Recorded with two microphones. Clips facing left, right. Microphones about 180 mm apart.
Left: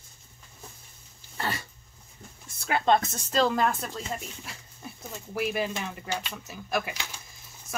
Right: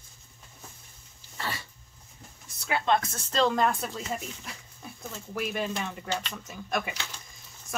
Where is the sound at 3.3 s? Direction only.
5° left (ahead or behind).